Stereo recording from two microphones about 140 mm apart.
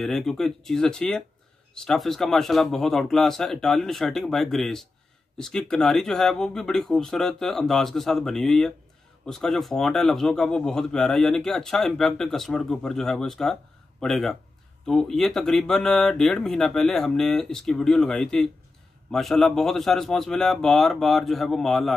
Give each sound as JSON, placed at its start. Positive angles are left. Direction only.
{"t": 0.0, "sound": "a man's voice", "side_deg": 0}